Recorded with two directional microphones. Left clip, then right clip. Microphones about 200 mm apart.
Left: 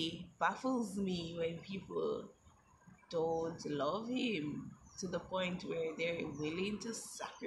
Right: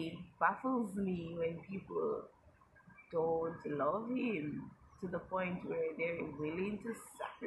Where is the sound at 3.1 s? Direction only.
10° left (ahead or behind).